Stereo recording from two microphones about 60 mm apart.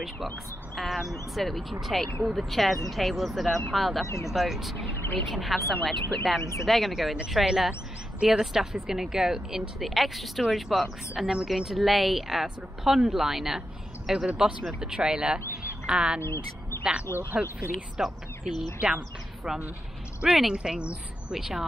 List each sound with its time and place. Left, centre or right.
0.7 s speech: centre
4.0 s speech: left
4.3 s speech: centre
16.2 s speech: left
17.3 s speech: right
17.9 s speech: centre
20.2 s speech: centre